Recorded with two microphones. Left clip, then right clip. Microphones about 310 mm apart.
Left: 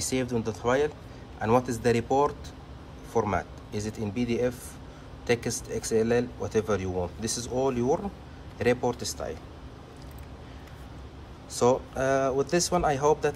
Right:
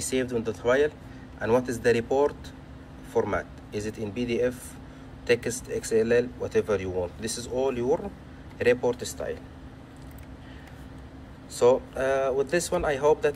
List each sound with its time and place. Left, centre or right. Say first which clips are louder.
0.0 s speech: right 2 dB; centre
11.5 s speech: right 3 dB; centre